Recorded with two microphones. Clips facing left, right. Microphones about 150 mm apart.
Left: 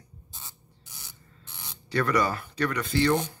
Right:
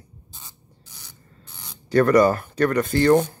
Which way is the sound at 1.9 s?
45° right (ahead or behind).